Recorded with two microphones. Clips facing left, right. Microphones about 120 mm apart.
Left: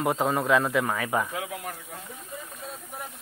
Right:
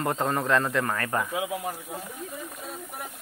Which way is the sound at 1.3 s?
15° right (ahead or behind).